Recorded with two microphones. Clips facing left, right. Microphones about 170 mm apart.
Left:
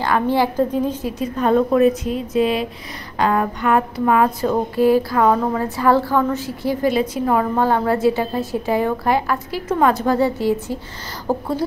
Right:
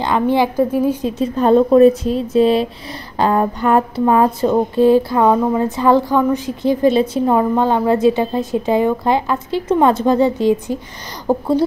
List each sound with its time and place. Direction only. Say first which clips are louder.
0.0 s a woman's voice: right 2 dB; 20° right (ahead or behind)
1.0 s a woman's voice: right 4 dB; 25° right (ahead or behind)
3.2 s a sound: right 3 dB; 30° right (ahead or behind)